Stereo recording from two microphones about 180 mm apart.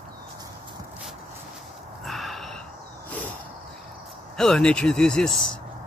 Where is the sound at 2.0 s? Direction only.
Centre (ahead or behind).